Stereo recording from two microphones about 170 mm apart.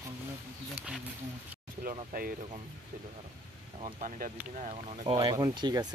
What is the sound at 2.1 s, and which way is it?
Speech, 60° right (ahead or behind).